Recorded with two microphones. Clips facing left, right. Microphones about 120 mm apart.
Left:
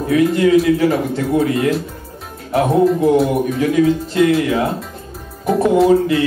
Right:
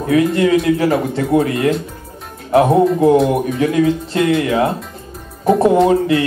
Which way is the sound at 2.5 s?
30° right (ahead or behind).